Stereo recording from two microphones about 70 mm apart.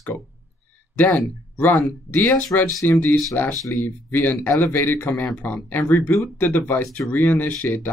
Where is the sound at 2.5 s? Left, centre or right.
Left.